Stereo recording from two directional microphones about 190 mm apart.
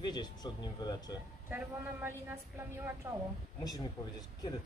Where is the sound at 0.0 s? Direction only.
20° left (ahead or behind).